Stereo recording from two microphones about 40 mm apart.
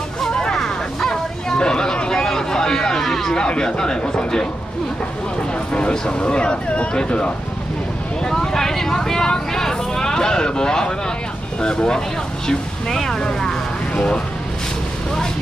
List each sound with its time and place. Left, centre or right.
0.3 s a sound: centre
0.6 s music: centre
1.6 s vehicle: centre
2.2 s a sound: centre
3.3 s speech: left
5.7 s speech: left
8.3 s vehicle: centre
11.6 s speech: centre